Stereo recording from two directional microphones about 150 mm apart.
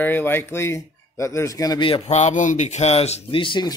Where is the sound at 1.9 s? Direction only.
50° left (ahead or behind); by 3.7 s 30° left (ahead or behind).